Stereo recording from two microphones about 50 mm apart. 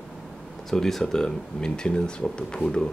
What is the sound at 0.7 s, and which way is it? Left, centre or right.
Speech, centre.